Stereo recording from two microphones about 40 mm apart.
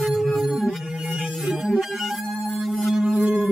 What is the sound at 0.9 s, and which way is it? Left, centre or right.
Music, centre.